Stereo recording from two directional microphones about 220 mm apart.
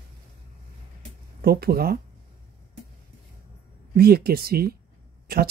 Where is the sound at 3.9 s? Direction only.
45° right (ahead or behind).